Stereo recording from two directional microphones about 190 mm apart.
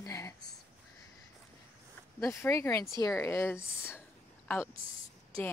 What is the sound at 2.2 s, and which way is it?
A woman's voice, 15° left (ahead or behind).